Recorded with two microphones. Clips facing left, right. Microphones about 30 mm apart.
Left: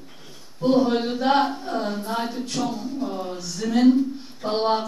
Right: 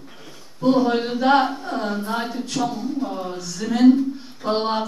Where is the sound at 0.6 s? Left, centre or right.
Centre.